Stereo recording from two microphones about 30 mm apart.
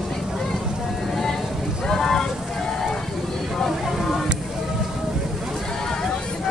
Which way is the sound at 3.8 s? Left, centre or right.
Centre.